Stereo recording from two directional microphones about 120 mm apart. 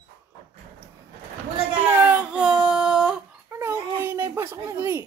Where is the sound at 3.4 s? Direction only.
20° right (ahead or behind).